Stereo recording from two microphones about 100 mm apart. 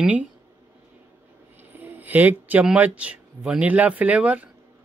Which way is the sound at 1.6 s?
20° right (ahead or behind).